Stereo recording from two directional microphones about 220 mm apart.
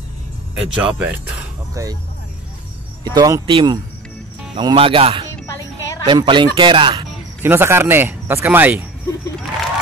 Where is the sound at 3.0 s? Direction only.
20° right (ahead or behind).